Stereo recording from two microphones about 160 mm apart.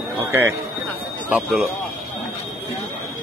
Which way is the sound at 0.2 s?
15° right (ahead or behind).